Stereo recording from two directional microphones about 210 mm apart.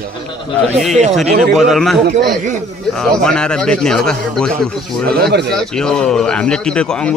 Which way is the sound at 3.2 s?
5° left (ahead or behind).